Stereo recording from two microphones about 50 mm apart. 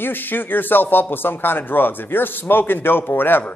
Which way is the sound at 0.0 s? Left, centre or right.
Left.